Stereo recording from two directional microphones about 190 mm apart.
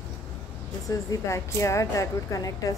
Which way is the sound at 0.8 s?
15° left (ahead or behind).